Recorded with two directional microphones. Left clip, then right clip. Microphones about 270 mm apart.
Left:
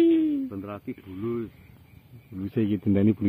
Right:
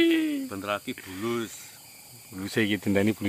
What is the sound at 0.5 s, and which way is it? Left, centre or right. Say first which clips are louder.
Speech: right 5 dB; right.